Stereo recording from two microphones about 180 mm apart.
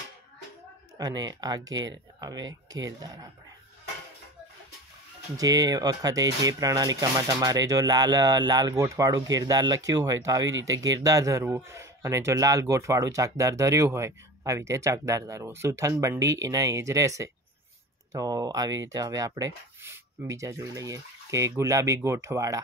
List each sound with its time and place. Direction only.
0.9 s speech: 20° right (ahead or behind)
5.4 s speech: 20° right (ahead or behind)